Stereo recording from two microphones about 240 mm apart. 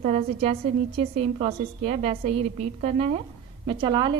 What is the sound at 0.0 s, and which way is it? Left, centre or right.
A woman's voice, right.